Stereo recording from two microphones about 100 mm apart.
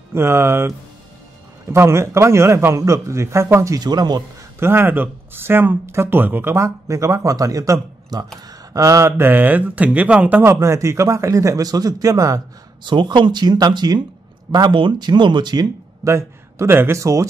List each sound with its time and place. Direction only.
0.1 s speech: 25° right (ahead or behind); by 4.2 s 45° right (ahead or behind)
4.6 s speech: 25° right (ahead or behind)
10.4 s a man's voice: 30° right (ahead or behind)
12.8 s speech: 50° right (ahead or behind); by 17.3 s 30° right (ahead or behind)